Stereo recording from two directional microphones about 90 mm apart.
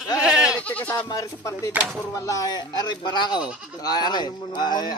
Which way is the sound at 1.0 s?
35° left (ahead or behind).